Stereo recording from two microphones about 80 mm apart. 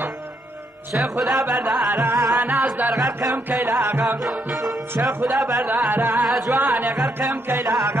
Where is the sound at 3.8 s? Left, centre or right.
Right.